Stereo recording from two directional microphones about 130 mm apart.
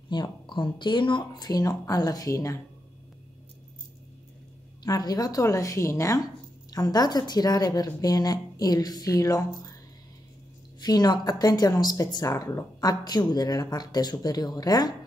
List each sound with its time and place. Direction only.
0.1 s a woman's voice: 35° left (ahead or behind)
4.8 s a woman's voice: 30° left (ahead or behind)
10.8 s speech: 30° left (ahead or behind)